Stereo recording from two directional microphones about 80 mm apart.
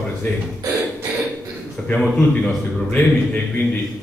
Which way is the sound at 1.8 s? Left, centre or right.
Centre.